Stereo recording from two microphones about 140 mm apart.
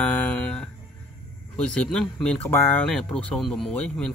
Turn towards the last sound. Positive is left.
turn(degrees=5)  # may be behind; listen again after turning